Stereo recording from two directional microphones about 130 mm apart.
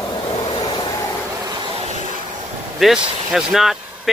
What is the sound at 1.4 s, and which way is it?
Vehicle, 35° right (ahead or behind).